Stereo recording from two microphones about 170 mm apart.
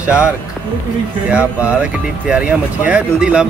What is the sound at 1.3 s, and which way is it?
Speech, 5° right (ahead or behind).